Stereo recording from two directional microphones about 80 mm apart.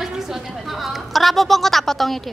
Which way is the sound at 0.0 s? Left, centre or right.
Centre.